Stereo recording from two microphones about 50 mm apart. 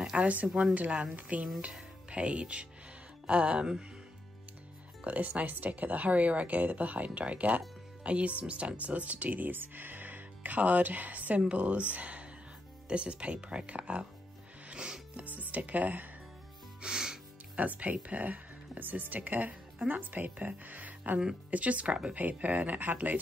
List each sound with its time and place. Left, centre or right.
0.2 s speech: right
5.0 s a woman's voice: right
14.7 s music: right
15.2 s a woman's voice: right
16.8 s music: centre
17.6 s a woman's voice: right
22.1 s a woman's voice: right